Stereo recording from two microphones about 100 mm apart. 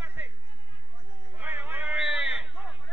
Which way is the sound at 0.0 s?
15° right (ahead or behind).